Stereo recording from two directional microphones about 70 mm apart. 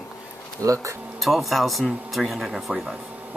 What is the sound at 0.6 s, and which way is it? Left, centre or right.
Speech, right.